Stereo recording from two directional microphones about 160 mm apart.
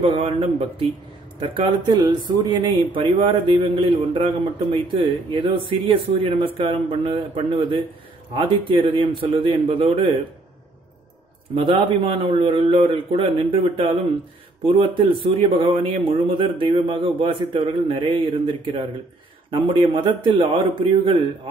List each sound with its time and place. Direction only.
0.0 s speech: 35° right (ahead or behind)
11.5 s speech: 30° right (ahead or behind)